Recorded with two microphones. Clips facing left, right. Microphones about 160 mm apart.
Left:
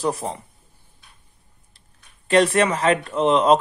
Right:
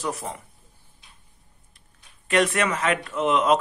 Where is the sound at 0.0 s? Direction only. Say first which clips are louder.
Left 6 dB; 30° left (ahead or behind).